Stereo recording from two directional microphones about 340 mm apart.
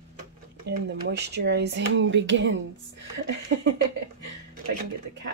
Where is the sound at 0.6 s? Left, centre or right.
Right.